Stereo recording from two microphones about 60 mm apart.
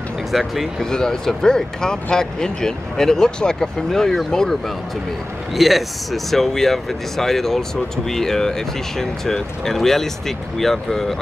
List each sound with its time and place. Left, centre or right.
0.3 s speech: centre
0.8 s speech: centre